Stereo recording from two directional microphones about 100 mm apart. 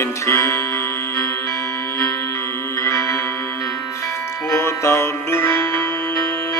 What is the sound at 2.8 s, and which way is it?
Music, 25° left (ahead or behind).